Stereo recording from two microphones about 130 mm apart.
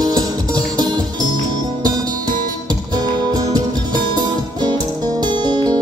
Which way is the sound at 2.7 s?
30° right (ahead or behind).